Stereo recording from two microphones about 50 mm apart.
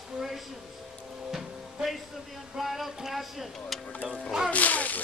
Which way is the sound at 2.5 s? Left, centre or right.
Centre.